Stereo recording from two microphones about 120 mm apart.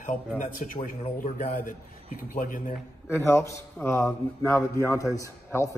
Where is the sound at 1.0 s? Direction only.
90° left.